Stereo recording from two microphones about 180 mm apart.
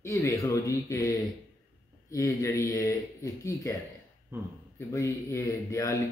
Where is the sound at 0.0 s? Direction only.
15° left (ahead or behind).